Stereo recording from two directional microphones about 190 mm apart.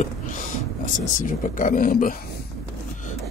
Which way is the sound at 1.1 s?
40° left (ahead or behind).